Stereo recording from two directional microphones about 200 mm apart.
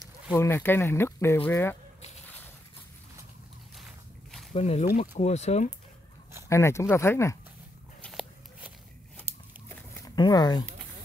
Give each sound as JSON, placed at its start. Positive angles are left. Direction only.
{"t": 0.0, "sound": "speech", "side_deg": 15}
{"t": 3.7, "sound": "walk", "side_deg": 0}
{"t": 4.6, "sound": "speech", "side_deg": 30}
{"t": 6.5, "sound": "speech", "side_deg": 15}
{"t": 8.0, "sound": "walk", "side_deg": 0}
{"t": 9.7, "sound": "a sound", "side_deg": 10}
{"t": 10.1, "sound": "speech", "side_deg": 20}